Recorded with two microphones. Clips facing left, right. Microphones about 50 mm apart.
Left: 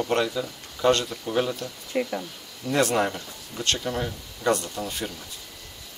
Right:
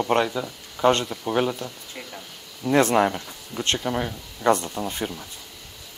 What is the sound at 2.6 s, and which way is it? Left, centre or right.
Speech, right.